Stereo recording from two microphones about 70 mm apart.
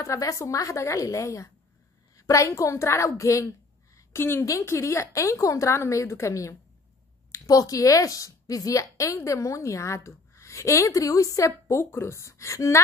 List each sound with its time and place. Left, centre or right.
0.0 s a woman's voice: left
3.9 s a sound: left
4.5 s a woman's voice: left
11.6 s speech: left